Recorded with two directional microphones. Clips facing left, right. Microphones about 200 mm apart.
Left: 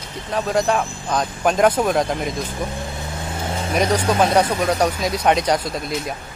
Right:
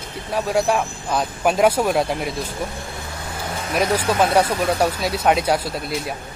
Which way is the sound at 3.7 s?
5° right (ahead or behind).